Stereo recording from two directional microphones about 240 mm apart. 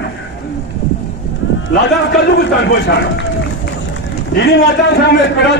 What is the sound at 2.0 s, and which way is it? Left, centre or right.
A man's voice, left.